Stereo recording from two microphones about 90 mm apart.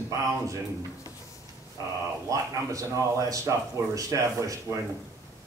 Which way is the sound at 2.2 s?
40° right (ahead or behind).